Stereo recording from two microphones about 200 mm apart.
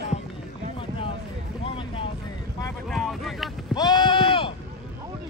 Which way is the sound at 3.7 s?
20° left (ahead or behind).